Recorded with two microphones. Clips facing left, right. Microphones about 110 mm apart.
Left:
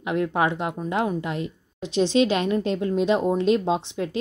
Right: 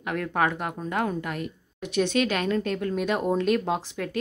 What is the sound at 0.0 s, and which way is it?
A woman's voice, 20° left (ahead or behind).